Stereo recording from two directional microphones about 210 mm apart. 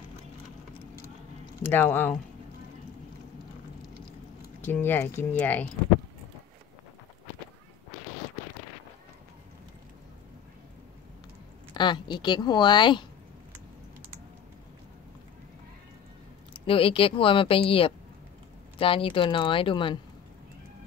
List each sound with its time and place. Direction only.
1.6 s speech: 10° left (ahead or behind)
4.6 s speech: 10° left (ahead or behind)
11.7 s speech: 20° left (ahead or behind)
16.6 s speech: 25° left (ahead or behind)